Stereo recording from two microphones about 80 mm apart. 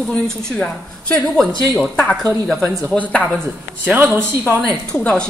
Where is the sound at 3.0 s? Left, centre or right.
Centre.